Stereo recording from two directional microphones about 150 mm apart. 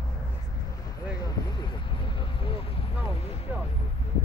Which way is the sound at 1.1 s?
30° left (ahead or behind).